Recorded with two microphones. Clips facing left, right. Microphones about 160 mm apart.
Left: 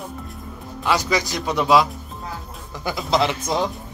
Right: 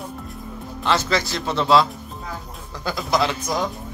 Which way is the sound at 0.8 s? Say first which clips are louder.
Even; 15° left (ahead or behind).